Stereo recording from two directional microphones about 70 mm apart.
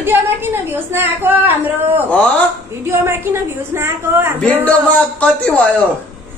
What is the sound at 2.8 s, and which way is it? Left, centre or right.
A woman's voice, right.